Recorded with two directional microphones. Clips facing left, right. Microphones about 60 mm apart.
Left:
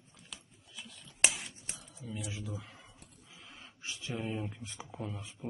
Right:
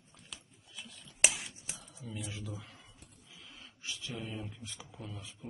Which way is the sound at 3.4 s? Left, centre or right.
Left.